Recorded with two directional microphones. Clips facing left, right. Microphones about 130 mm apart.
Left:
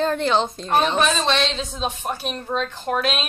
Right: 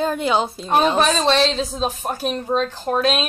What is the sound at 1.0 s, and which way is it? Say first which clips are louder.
Speech: right 3 dB; 40° right (ahead or behind).